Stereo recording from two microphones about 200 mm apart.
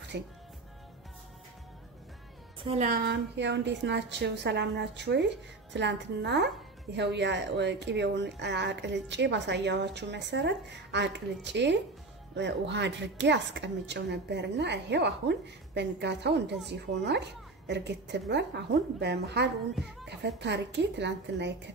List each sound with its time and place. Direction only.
0.1 s speech: 55° right (ahead or behind)
2.6 s a woman's voice: 30° right (ahead or behind)
2.9 s speech: 55° right (ahead or behind)